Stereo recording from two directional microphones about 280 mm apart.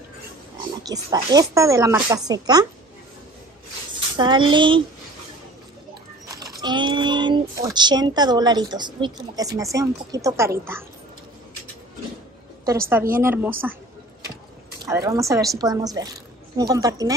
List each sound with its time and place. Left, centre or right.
0.8 s speech: centre
4.2 s speech: centre
6.2 s speech: centre
13.1 s speech: centre
14.9 s speech: centre